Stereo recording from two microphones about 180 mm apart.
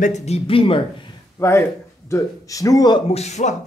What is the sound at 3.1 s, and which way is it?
Speech, 40° left (ahead or behind).